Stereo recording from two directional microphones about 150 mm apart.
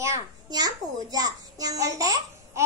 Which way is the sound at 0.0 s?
25° right (ahead or behind).